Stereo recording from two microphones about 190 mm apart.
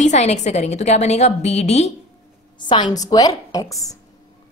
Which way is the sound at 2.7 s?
20° left (ahead or behind).